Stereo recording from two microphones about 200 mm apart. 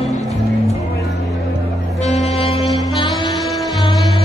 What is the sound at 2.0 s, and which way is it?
Music, 35° left (ahead or behind).